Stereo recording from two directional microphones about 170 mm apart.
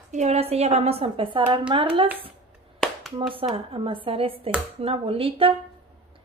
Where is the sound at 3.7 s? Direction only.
30° right (ahead or behind).